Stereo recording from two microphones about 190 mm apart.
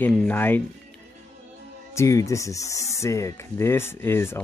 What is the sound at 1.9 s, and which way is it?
Speech, 15° left (ahead or behind).